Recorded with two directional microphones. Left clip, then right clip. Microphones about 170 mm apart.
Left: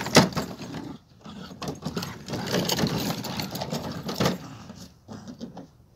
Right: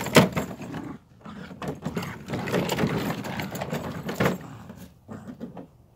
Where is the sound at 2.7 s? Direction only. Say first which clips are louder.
Even; 10° left (ahead or behind).